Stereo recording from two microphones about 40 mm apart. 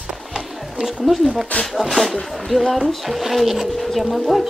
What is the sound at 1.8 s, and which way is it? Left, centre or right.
Speech, centre.